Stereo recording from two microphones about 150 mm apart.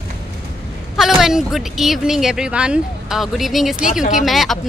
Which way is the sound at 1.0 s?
Centre (ahead or behind).